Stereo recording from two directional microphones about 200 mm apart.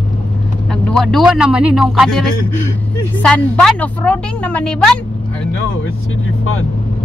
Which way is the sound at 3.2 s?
5° left (ahead or behind).